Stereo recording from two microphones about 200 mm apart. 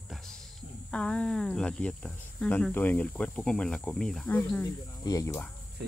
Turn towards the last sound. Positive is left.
turn(degrees=15)  # may be behind; listen again after turning